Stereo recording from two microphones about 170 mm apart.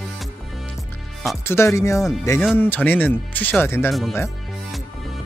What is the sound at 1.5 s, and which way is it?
Speech, 15° left (ahead or behind).